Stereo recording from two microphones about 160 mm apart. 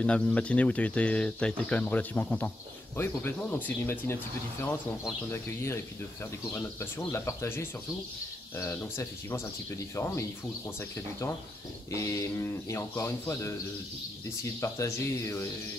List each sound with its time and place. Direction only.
0.0 s speech: 10° left (ahead or behind)
14.6 s speech: 20° left (ahead or behind)